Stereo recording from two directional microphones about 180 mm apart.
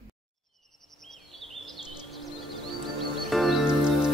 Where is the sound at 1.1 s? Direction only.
Centre (ahead or behind).